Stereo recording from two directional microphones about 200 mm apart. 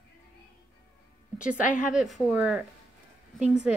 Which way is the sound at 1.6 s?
5° right (ahead or behind).